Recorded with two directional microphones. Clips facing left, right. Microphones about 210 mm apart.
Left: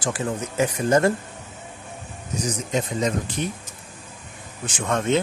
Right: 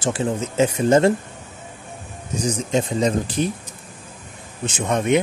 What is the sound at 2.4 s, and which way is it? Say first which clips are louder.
Speech: right 5 dB; 30° right (ahead or behind).